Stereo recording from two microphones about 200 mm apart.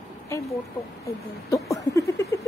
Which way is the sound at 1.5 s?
15° left (ahead or behind).